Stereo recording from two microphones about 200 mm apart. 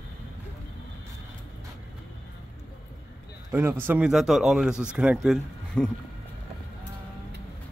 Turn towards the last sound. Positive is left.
turn(degrees=0)  # may be behind; listen again after turning